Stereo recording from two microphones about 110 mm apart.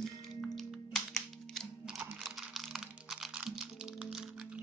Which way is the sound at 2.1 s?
Centre (ahead or behind).